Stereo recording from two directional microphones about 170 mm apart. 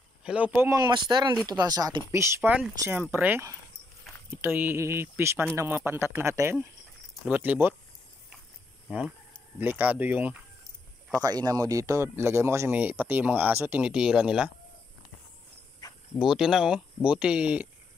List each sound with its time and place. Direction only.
0.2 s speech: 5° right (ahead or behind)
9.6 s speech: 10° right (ahead or behind)
11.1 s speech: 20° right (ahead or behind); by 14.5 s 5° right (ahead or behind)
16.2 s speech: 5° right (ahead or behind)